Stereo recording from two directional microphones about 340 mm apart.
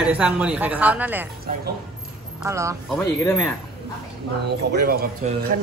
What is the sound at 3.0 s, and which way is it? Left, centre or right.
Speech, centre.